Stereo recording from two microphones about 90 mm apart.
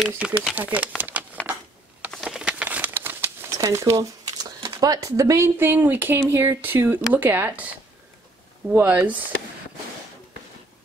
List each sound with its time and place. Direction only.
0.2 s speech: 15° right (ahead or behind)
0.6 s a sound: 20° right (ahead or behind)
2.2 s crumpling: 10° right (ahead or behind); by 4.6 s 50° right (ahead or behind)
4.8 s speech: 40° right (ahead or behind); by 7.6 s 25° right (ahead or behind)
8.6 s speech: 20° right (ahead or behind)